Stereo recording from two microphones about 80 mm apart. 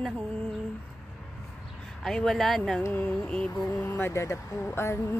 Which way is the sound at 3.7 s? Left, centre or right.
Left.